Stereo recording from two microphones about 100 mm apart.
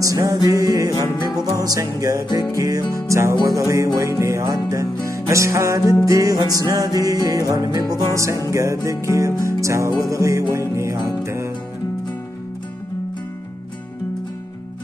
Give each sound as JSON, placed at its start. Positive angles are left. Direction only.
{"t": 0.0, "sound": "music", "side_deg": -35}